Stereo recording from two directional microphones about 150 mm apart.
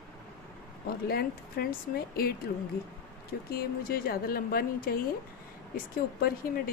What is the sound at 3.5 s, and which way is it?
A woman's voice, 85° left.